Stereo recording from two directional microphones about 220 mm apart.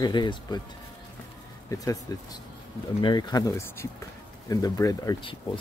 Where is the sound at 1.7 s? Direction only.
15° left (ahead or behind).